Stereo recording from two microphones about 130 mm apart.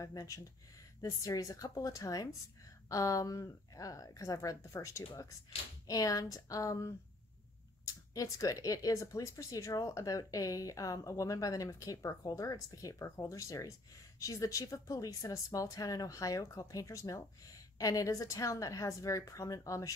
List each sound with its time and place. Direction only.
0.0 s speech: 25° left (ahead or behind)